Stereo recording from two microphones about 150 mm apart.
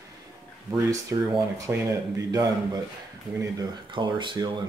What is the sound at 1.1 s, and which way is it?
Speech, 25° right (ahead or behind).